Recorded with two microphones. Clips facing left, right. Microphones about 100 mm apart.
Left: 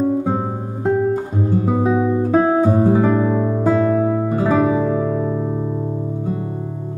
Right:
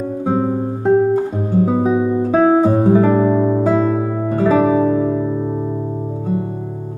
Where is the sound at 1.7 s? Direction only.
10° right (ahead or behind); by 4.6 s 10° left (ahead or behind).